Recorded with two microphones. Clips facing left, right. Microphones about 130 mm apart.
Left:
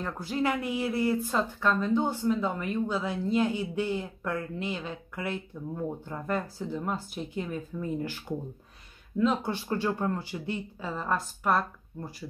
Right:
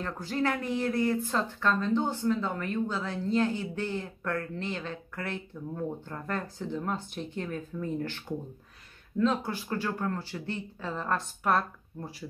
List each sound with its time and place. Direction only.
0.0 s speech: 10° left (ahead or behind)
9.5 s speech: 25° left (ahead or behind); by 12.3 s centre (ahead or behind)